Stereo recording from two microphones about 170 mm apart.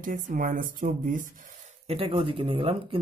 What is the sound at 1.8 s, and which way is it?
Speech, 35° right (ahead or behind).